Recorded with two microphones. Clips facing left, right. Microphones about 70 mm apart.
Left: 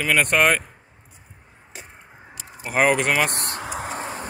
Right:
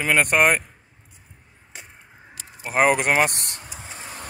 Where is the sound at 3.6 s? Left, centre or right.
Left.